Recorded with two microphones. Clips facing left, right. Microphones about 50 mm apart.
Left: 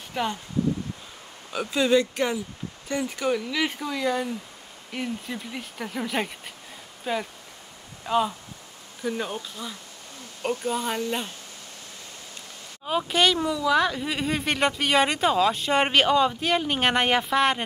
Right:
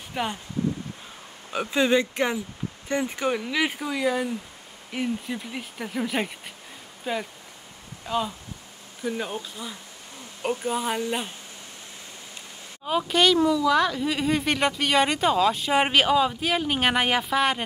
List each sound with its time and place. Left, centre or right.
0.1 s speech: centre
1.5 s speech: right; by 7.2 s centre
9.0 s speech: centre
12.8 s speech: centre